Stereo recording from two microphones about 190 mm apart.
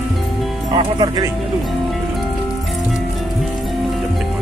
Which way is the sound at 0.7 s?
20° right (ahead or behind).